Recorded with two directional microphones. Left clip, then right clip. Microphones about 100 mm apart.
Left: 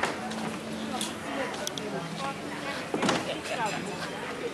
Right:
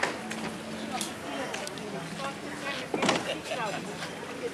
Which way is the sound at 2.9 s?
20° right (ahead or behind).